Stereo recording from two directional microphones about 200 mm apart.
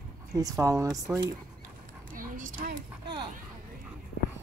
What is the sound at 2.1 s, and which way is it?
Speech, 45° right (ahead or behind).